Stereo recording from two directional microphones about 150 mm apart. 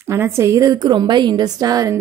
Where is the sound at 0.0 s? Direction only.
20° right (ahead or behind).